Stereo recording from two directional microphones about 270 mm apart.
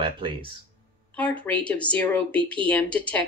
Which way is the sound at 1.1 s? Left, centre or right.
Centre.